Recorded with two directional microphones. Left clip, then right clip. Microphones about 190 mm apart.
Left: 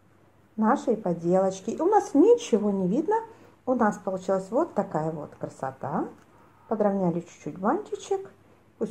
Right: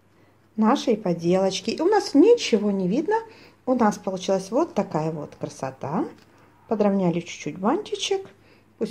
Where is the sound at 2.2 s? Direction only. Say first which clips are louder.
Right 5 dB; 5° right (ahead or behind).